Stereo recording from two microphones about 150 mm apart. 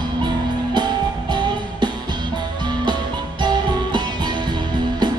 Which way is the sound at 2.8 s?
30° right (ahead or behind).